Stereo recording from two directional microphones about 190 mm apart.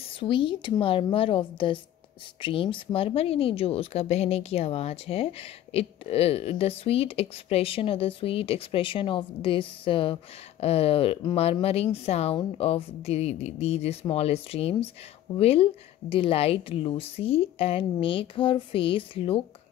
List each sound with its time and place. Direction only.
0.2 s speech: 25° left (ahead or behind)